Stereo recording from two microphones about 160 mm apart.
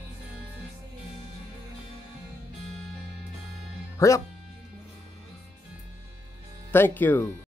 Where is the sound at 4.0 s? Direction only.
20° left (ahead or behind).